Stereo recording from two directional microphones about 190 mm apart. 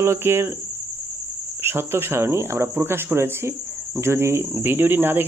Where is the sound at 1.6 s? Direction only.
10° right (ahead or behind).